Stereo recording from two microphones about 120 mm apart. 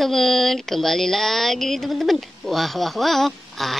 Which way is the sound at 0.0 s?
Centre (ahead or behind).